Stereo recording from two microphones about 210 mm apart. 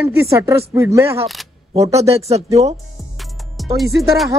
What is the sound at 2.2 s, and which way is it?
Speech, 30° right (ahead or behind).